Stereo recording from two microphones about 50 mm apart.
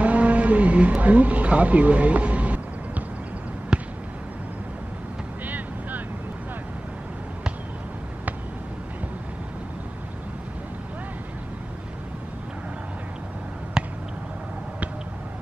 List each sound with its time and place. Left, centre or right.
0.0 s speech: right
3.7 s basketball bounce: centre
5.5 s boat: right
13.8 s a sound: centre